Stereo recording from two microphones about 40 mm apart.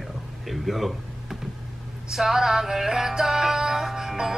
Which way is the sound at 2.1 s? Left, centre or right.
Centre.